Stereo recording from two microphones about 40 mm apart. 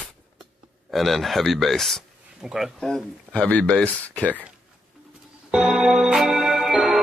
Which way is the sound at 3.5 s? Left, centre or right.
Left.